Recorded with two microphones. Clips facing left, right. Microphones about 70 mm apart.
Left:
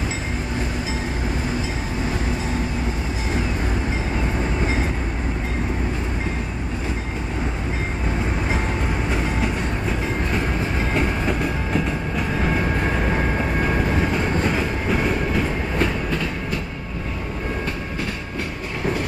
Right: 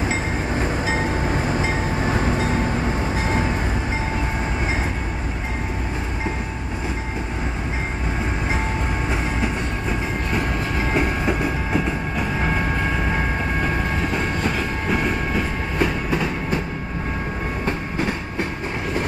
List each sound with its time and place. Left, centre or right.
10.9 s train: centre
14.9 s train: centre
16.1 s train: centre